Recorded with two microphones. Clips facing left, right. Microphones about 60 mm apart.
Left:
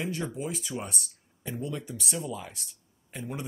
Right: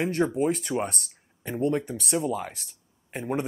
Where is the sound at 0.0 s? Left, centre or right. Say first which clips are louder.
Right 9 dB; right.